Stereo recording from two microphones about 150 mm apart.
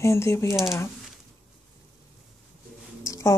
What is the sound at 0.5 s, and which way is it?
Speech, centre (ahead or behind).